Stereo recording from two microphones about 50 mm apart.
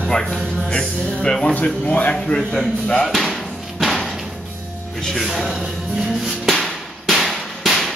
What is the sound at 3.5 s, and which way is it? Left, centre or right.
Music, centre.